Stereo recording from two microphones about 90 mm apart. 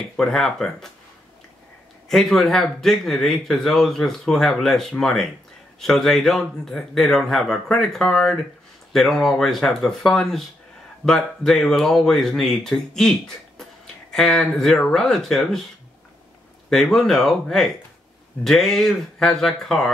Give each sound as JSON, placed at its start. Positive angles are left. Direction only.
{"t": 0.2, "sound": "speech", "side_deg": 5}
{"t": 2.0, "sound": "speech", "side_deg": 5}
{"t": 14.1, "sound": "speech", "side_deg": 5}
{"t": 16.7, "sound": "speech", "side_deg": 5}